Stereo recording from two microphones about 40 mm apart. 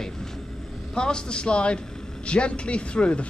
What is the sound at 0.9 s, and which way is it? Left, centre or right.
Speech, left.